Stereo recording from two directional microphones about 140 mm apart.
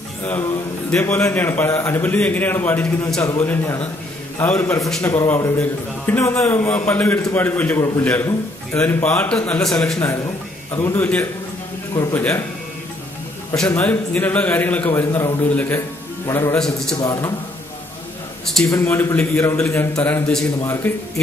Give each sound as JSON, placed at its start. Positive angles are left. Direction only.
{"t": 0.2, "sound": "a man's voice", "side_deg": 15}
{"t": 10.8, "sound": "a man's voice", "side_deg": 15}
{"t": 13.7, "sound": "a man's voice", "side_deg": 10}
{"t": 16.5, "sound": "a man's voice", "side_deg": 5}
{"t": 16.9, "sound": "a man's voice", "side_deg": 25}
{"t": 18.7, "sound": "a man's voice", "side_deg": 20}